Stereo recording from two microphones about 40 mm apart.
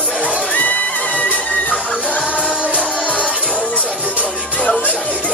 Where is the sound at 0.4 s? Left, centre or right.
Left.